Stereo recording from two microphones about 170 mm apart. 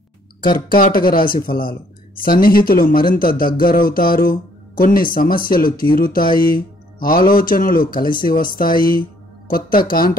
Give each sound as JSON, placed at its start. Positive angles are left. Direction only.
{"t": 0.7, "sound": "a man's voice", "side_deg": 55}